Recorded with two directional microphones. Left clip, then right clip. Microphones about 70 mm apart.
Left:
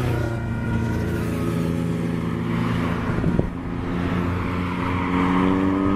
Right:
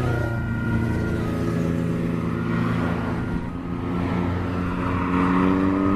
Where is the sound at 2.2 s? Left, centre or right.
Left.